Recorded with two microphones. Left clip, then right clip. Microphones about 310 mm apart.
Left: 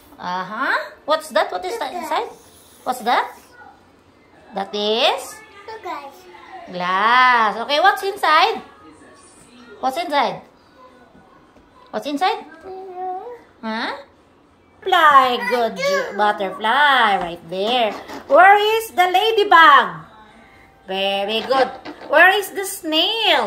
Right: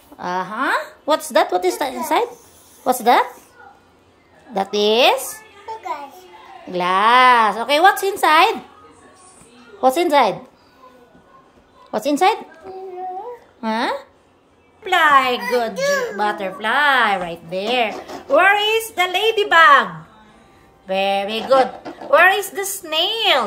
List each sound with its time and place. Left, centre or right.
0.2 s a woman's voice: centre
4.6 s a woman's voice: right
6.7 s a woman's voice: centre
9.8 s a woman's voice: right
11.9 s a child's voice: centre
14.9 s a child's voice: centre